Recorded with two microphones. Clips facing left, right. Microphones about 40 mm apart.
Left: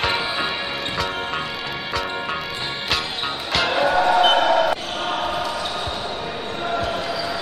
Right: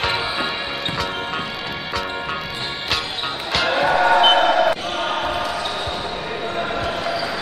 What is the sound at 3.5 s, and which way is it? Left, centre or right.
Music, centre.